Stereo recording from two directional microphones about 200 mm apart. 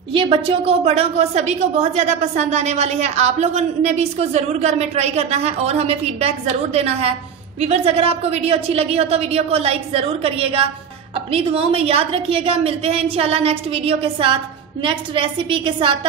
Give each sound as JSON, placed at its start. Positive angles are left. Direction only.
{"t": 0.1, "sound": "a woman's voice", "side_deg": -25}